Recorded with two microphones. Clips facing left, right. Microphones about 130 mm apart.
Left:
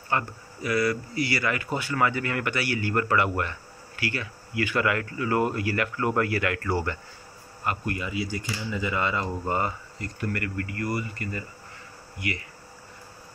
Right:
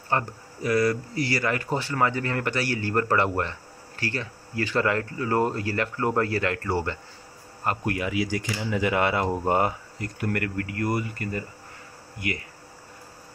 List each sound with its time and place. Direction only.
0.1 s speech: 40° right (ahead or behind)
7.8 s speech: 80° right
8.5 s speech: 75° right (ahead or behind); by 12.4 s 50° right (ahead or behind)